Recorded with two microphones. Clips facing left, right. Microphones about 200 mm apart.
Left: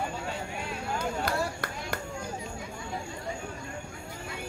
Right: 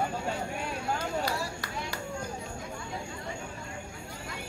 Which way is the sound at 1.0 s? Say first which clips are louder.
Left 2 dB; 55° left (ahead or behind).